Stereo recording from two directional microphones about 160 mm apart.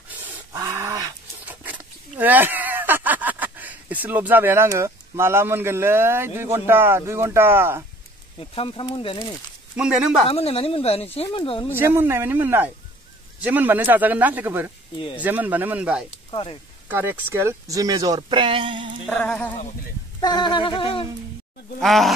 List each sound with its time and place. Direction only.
0.5 s dog: 15° right (ahead or behind)
1.4 s speech: 10° right (ahead or behind)
8.4 s speech: 35° left (ahead or behind)
9.8 s speech: 5° right (ahead or behind)
10.2 s speech: 40° left (ahead or behind)
11.7 s speech: 15° right (ahead or behind)
16.3 s speech: 30° left (ahead or behind)
16.9 s speech: 15° right (ahead or behind); by 18.9 s 30° right (ahead or behind)
19.0 s speech: 5° left (ahead or behind)
20.2 s speech: 25° left (ahead or behind)
21.7 s speech: centre (ahead or behind)